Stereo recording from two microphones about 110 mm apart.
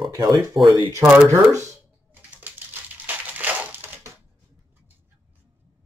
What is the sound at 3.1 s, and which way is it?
Crushing, 15° right (ahead or behind).